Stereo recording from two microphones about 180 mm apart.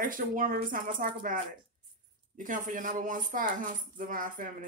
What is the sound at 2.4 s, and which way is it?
Speech, 45° right (ahead or behind).